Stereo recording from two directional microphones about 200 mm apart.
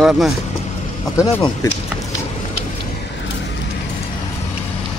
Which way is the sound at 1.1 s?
15° left (ahead or behind).